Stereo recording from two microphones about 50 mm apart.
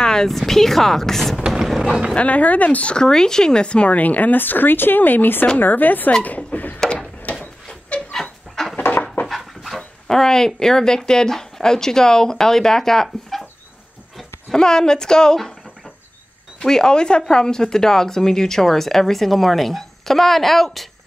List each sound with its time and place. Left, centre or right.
0.0 s speech: centre
1.5 s a sound: centre
2.1 s speech: left
2.9 s speech: centre; by 6.1 s left
6.2 s a sound: left
6.9 s a sound: left
8.1 s dog: centre
8.7 s a sound: left
9.3 s dog: centre
9.8 s speech: centre
14.5 s speech: centre
16.5 s speech: centre